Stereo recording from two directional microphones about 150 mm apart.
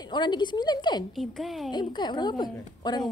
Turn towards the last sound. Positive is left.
turn(degrees=30)  # may be behind; listen again after turning